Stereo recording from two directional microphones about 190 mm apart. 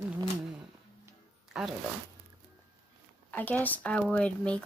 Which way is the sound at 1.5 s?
5° right (ahead or behind).